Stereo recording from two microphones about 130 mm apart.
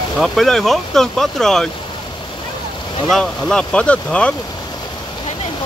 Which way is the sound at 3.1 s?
5° left (ahead or behind).